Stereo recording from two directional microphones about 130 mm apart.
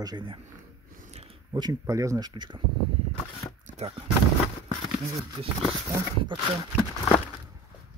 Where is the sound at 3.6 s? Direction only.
60° right (ahead or behind).